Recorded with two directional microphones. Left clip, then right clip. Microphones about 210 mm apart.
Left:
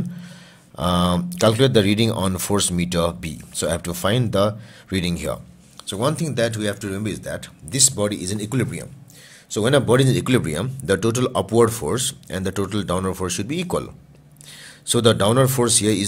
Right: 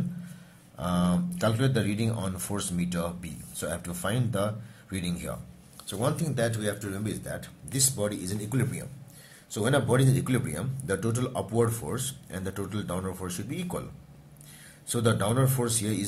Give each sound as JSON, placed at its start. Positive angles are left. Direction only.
{"t": 0.7, "sound": "speech", "side_deg": 45}
{"t": 14.9, "sound": "speech", "side_deg": 45}